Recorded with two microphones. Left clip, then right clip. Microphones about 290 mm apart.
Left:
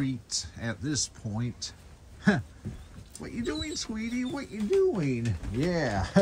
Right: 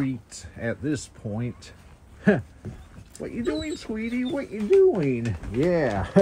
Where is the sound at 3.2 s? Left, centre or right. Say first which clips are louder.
Right 5 dB; centre.